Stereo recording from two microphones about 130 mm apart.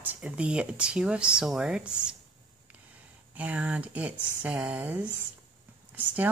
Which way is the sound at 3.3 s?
10° right (ahead or behind).